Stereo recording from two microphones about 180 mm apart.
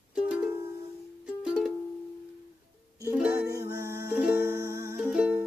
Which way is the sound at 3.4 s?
20° right (ahead or behind).